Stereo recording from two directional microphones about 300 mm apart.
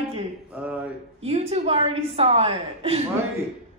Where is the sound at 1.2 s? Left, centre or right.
Right.